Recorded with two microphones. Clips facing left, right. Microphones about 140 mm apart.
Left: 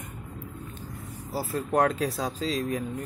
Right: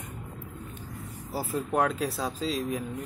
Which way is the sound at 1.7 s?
Centre (ahead or behind).